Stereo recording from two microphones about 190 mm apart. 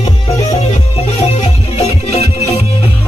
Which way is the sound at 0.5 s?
35° left (ahead or behind).